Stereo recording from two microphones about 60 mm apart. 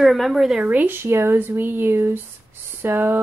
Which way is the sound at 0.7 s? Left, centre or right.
Right.